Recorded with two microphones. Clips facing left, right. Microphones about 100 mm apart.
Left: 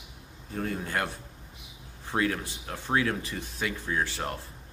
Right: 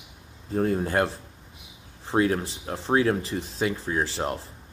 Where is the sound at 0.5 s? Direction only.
35° right (ahead or behind).